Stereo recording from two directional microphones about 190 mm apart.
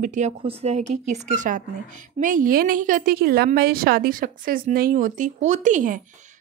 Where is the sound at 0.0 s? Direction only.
40° right (ahead or behind).